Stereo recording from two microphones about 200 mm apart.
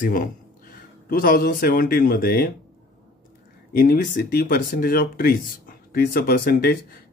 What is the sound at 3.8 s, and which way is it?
Speech, 45° left (ahead or behind).